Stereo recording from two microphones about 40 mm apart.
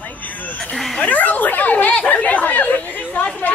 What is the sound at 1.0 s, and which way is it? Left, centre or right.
Chatter, left.